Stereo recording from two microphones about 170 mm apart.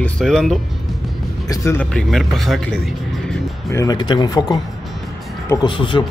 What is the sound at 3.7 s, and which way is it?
Speech, 20° left (ahead or behind).